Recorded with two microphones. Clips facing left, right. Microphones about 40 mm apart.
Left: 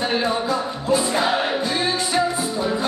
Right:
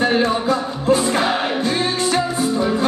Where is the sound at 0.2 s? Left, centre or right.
Right.